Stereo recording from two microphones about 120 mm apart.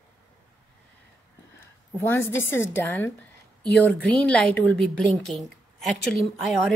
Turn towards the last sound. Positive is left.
turn(degrees=0)  # may be behind; listen again after turning